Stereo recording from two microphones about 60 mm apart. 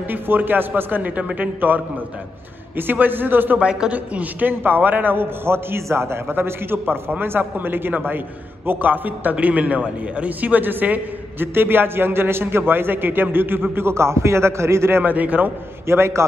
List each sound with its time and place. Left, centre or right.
0.1 s a man's voice: right
3.5 s a man's voice: centre; by 15.0 s right
15.0 s a man's voice: right
15.9 s a man's voice: right